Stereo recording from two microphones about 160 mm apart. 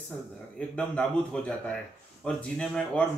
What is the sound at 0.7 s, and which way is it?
Speech, 5° left (ahead or behind).